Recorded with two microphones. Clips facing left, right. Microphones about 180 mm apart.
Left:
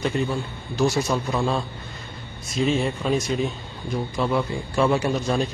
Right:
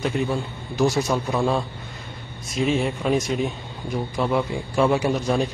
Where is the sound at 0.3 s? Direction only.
15° right (ahead or behind).